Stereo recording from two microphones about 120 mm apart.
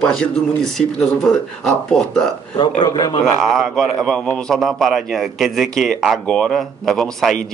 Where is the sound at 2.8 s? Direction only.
40° left (ahead or behind).